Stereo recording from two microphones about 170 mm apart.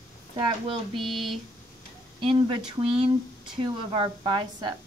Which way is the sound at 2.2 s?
30° right (ahead or behind).